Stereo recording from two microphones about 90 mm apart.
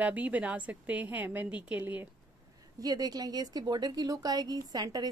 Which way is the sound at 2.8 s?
45° right (ahead or behind).